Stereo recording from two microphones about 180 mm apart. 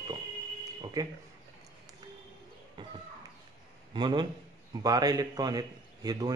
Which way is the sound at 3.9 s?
25° right (ahead or behind).